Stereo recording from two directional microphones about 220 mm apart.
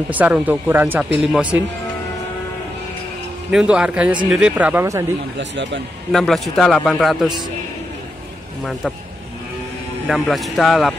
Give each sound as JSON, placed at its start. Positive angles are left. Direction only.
{"t": 0.1, "sound": "speech", "side_deg": -5}
{"t": 3.5, "sound": "a man's voice", "side_deg": -5}
{"t": 5.4, "sound": "speech", "side_deg": -55}
{"t": 6.1, "sound": "a man's voice", "side_deg": 0}
{"t": 10.0, "sound": "a man's voice", "side_deg": 0}